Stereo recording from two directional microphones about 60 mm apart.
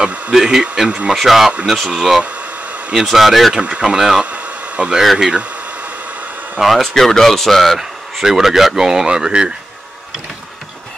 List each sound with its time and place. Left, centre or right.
0.0 s a sound: right
0.3 s speech: centre
1.1 s speech: centre
3.6 s speech: centre
4.3 s a sound: centre
5.0 s speech: centre
6.6 s speech: centre